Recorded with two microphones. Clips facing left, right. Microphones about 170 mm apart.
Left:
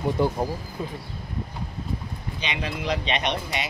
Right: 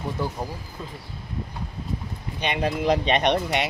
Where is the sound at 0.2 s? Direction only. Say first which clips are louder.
Left 6 dB; 20° left (ahead or behind).